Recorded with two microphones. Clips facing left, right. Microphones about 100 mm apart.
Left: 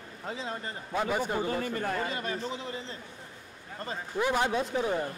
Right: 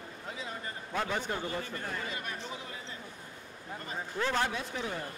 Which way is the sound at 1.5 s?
50° left (ahead or behind).